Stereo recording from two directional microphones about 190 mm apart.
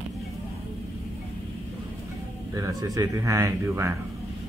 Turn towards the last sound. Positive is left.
turn(degrees=-15)  # may be behind; listen again after turning